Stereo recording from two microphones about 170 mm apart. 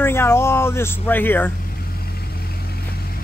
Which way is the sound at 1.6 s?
65° left (ahead or behind).